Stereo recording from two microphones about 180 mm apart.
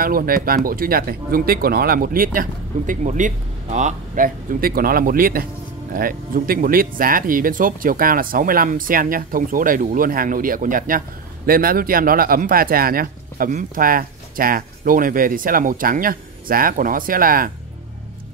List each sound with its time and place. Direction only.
0.0 s speech: 55° right (ahead or behind)